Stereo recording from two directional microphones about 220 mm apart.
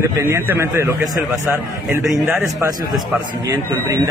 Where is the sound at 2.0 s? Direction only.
Centre (ahead or behind).